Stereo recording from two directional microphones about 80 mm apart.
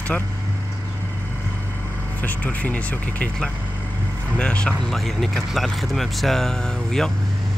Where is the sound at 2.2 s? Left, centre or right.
Centre.